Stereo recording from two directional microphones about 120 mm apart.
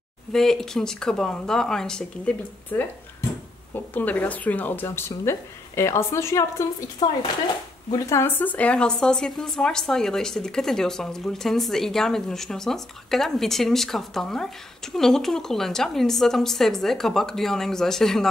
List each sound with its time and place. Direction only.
0.3 s speech: 5° left (ahead or behind); by 6.7 s 25° left (ahead or behind)
7.0 s speech: 35° left (ahead or behind)
7.9 s speech: 25° left (ahead or behind); by 18.2 s 5° left (ahead or behind)